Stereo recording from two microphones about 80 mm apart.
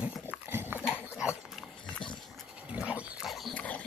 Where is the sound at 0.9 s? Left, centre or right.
Left.